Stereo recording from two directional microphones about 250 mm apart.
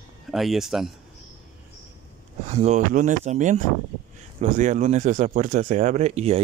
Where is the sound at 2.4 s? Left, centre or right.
Right.